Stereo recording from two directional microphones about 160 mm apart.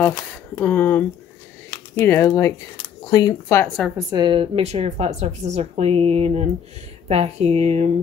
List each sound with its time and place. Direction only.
0.0 s speech: 15° left (ahead or behind)
3.6 s a woman's voice: centre (ahead or behind)
3.9 s speech: 25° right (ahead or behind); by 7.9 s 45° right (ahead or behind)